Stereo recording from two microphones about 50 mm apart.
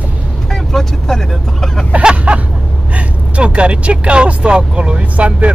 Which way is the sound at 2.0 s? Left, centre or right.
Right.